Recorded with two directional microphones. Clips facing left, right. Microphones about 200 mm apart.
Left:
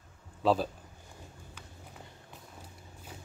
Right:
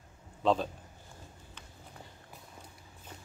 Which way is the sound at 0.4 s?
5° left (ahead or behind).